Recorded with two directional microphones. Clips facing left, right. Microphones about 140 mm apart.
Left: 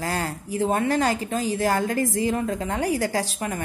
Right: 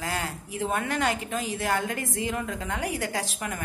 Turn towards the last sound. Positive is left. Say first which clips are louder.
# left 5 dB
turn(degrees=35)  # may be behind; listen again after turning